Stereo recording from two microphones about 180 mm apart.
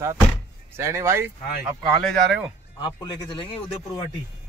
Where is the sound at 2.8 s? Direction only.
30° left (ahead or behind).